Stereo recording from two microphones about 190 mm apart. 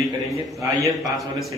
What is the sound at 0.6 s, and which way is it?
Speech, 15° right (ahead or behind).